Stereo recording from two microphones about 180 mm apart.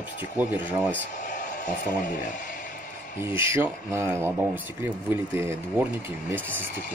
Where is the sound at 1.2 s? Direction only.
45° left (ahead or behind).